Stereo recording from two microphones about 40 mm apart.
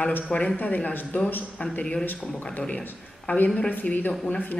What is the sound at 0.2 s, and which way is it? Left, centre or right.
A man's voice, left.